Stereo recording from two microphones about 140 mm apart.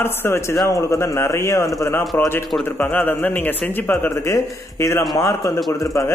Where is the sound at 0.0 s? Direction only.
15° left (ahead or behind).